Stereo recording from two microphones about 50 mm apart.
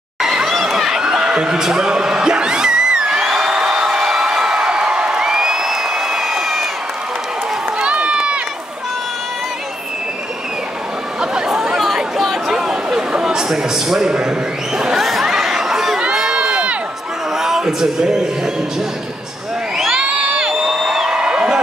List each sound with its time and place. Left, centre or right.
0.2 s a sound: centre
7.8 s run: right
11.1 s chatter: centre
11.6 s a sound: centre
15.0 s chatter: centre
16.3 s crowd: right
17.4 s music: centre
19.9 s crowd: right
20.6 s a sound: centre